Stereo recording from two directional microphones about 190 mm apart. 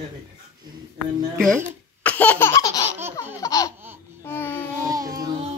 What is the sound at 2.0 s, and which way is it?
Laughter, 10° left (ahead or behind).